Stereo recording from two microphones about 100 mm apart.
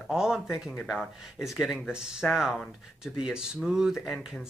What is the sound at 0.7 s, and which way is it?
Speech, 20° left (ahead or behind).